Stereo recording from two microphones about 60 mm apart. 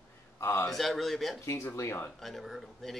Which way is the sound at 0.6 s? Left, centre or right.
Centre.